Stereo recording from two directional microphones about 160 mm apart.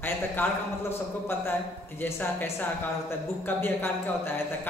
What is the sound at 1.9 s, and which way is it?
A man's voice, 15° left (ahead or behind).